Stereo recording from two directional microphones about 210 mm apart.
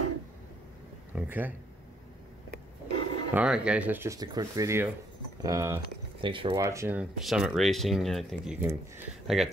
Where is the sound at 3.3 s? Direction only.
5° right (ahead or behind).